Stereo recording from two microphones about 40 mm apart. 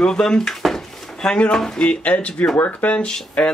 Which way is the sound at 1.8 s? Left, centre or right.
Left.